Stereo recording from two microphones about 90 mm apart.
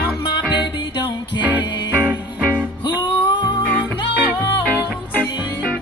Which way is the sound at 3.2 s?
60° left (ahead or behind).